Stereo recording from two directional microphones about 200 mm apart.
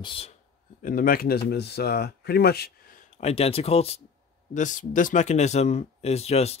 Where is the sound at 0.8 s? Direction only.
45° left (ahead or behind).